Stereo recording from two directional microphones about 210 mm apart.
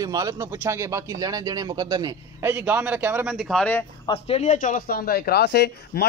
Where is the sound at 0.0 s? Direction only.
15° right (ahead or behind); by 3.8 s 5° left (ahead or behind).